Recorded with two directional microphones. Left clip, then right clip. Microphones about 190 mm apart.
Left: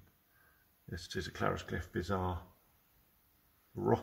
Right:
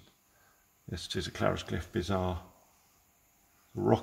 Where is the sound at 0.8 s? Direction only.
40° right (ahead or behind).